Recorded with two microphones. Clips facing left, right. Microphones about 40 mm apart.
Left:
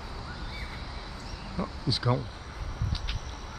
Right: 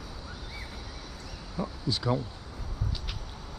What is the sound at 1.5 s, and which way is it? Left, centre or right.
Insect, centre.